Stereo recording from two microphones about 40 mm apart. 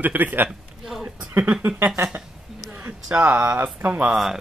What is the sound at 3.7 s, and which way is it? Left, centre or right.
Speech, right.